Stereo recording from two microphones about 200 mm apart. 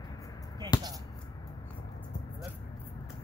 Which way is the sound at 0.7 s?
20° left (ahead or behind).